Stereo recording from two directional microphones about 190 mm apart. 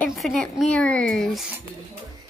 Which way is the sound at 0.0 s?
Centre (ahead or behind).